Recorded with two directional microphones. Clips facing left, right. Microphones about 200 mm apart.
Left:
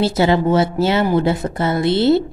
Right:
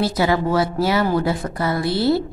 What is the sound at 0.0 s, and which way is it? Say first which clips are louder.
A woman's voice: left 4 dB; 25° left (ahead or behind).